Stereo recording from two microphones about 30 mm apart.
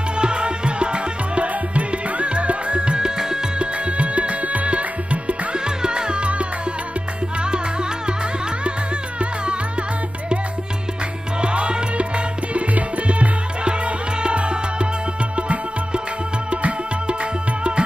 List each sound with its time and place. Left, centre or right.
0.2 s music: right
5.5 s music: right
11.4 s music: right
14.2 s music: right